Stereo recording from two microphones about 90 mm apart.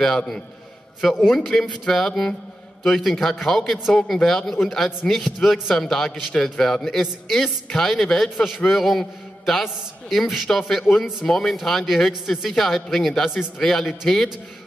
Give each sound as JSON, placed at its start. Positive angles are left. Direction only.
{"t": 1.0, "sound": "speech", "side_deg": 0}